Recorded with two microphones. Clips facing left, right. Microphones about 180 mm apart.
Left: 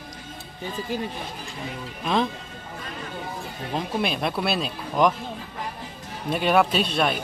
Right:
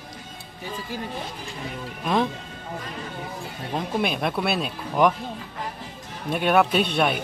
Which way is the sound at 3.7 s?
5° right (ahead or behind).